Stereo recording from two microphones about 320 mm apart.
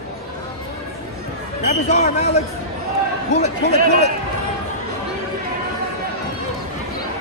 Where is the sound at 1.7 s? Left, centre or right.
Left.